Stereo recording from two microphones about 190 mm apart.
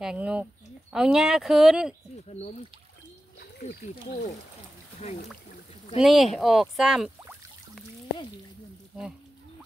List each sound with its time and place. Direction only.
0.0 s speech: 5° right (ahead or behind)
3.6 s speech: 45° left (ahead or behind)
5.9 s speech: centre (ahead or behind)